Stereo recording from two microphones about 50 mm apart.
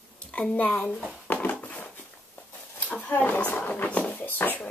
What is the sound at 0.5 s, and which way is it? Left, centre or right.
Speech, left.